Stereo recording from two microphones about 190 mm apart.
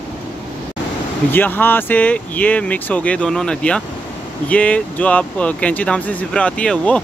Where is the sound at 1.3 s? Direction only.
10° left (ahead or behind).